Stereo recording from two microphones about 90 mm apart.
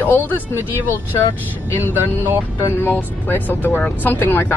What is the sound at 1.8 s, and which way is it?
Speech, 25° right (ahead or behind).